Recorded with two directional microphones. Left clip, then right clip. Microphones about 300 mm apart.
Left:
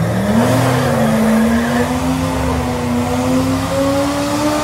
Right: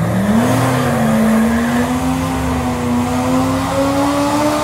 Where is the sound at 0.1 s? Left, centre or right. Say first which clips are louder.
Left 1 dB; centre.